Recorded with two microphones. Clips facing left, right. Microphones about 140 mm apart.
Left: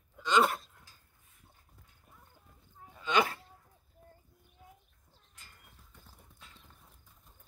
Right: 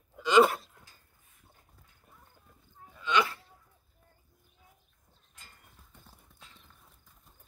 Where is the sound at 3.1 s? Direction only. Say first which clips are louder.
Right 1 dB; 50° left (ahead or behind).